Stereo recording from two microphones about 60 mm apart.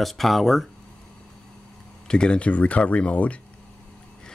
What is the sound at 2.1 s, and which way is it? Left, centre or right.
Speech, centre.